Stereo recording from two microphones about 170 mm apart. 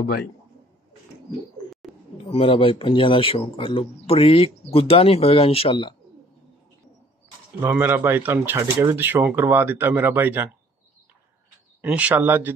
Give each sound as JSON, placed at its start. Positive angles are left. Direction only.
{"t": 2.2, "sound": "speech", "side_deg": 35}
{"t": 7.6, "sound": "speech", "side_deg": -10}
{"t": 11.8, "sound": "speech", "side_deg": -10}